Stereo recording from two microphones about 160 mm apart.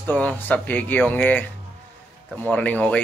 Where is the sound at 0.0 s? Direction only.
10° left (ahead or behind).